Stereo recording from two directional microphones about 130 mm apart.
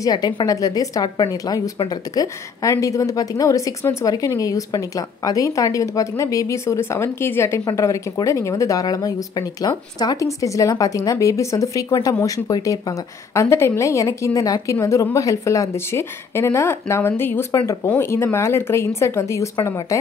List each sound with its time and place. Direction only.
0.0 s a woman's voice: 30° left (ahead or behind)